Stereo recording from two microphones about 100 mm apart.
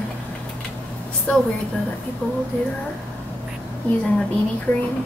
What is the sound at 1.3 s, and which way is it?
Speech, 15° left (ahead or behind).